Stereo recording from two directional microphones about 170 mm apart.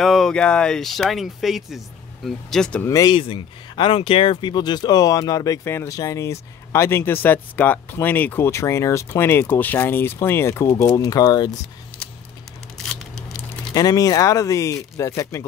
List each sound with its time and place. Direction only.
0.0 s speech: centre (ahead or behind)
2.9 s speech: 20° left (ahead or behind)
3.2 s speech: 30° left (ahead or behind)
12.7 s scissors: 5° left (ahead or behind)
13.7 s speech: 20° left (ahead or behind)